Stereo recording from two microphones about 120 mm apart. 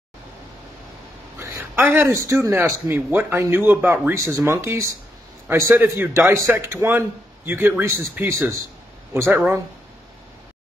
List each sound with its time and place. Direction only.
1.4 s a man's voice: 20° right (ahead or behind)